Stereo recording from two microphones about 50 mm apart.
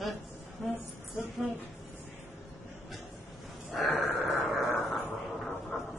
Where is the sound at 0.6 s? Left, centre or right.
Centre.